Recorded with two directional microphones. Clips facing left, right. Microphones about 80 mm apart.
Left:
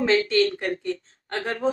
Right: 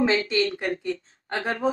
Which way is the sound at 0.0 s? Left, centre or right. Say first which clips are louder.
Left 2 dB; centre.